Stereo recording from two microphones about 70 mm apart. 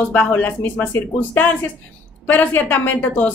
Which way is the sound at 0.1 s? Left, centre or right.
Left.